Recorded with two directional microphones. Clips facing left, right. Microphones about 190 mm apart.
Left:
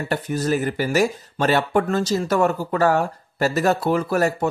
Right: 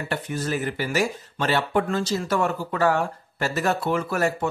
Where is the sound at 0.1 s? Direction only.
40° left (ahead or behind).